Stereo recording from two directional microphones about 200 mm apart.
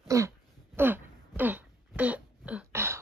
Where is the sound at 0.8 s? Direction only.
10° right (ahead or behind).